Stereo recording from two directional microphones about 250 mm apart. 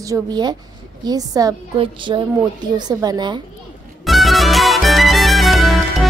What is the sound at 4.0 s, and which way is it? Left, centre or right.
Music, centre.